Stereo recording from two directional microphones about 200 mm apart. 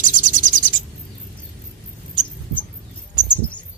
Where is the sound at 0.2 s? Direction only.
40° right (ahead or behind).